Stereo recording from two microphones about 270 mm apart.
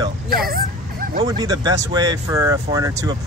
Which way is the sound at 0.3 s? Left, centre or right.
Right.